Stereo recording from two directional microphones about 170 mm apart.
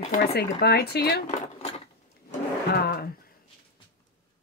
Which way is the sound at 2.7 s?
65° left (ahead or behind).